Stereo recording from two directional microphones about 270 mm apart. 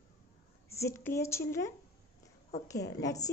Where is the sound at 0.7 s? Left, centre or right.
Centre.